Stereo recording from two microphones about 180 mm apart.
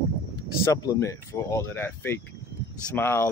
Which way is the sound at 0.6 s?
20° left (ahead or behind).